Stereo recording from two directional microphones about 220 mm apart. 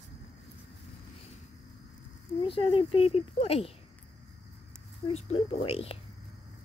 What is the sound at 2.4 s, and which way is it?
Speech, 25° left (ahead or behind).